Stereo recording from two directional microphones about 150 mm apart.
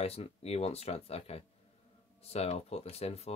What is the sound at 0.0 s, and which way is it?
Speech, 40° left (ahead or behind).